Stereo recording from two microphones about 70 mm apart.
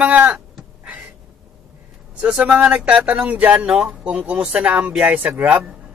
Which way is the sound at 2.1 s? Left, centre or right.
Centre.